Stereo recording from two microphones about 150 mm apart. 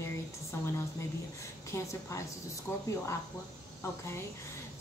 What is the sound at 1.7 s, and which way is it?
Speech, 20° left (ahead or behind).